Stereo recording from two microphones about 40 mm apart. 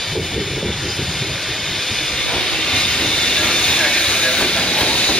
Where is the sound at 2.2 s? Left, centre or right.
Centre.